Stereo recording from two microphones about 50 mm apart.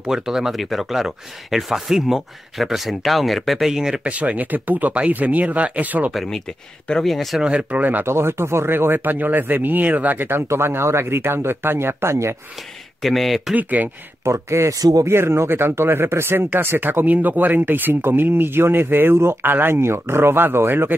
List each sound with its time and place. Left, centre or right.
0.0 s speech: centre
4.0 s speech: right
6.2 s speech: centre
7.3 s speech: right
8.0 s speech: right
10.5 s speech: right
13.0 s speech: centre
13.6 s speech: right
14.2 s speech: right
17.0 s speech: right